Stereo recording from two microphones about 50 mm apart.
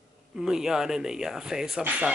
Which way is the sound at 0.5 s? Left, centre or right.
Centre.